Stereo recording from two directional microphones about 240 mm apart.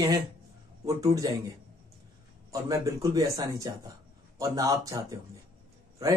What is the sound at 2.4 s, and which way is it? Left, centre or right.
Speech, centre.